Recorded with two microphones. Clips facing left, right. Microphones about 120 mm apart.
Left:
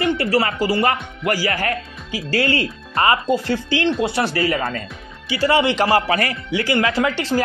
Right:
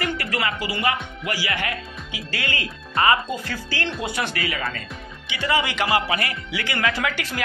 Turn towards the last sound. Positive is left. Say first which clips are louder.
# left 8 dB
turn(degrees=30)  # may be behind; listen again after turning